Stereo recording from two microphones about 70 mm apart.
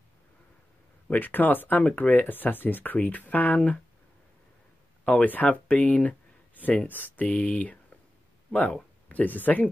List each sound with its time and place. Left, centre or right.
1.1 s speech: left
5.0 s speech: left
9.1 s speech: left